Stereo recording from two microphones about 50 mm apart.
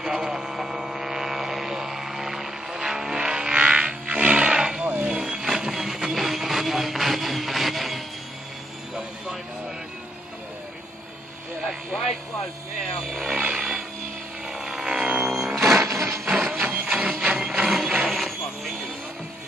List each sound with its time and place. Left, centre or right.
0.0 s vehicle: centre
13.3 s a sound: centre
14.5 s vehicle: centre
15.2 s music: centre
16.3 s printer: centre
16.5 s a sound: right
17.4 s vehicle: centre